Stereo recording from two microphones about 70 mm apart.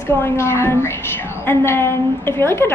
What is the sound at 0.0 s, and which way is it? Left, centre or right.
A woman's voice, left.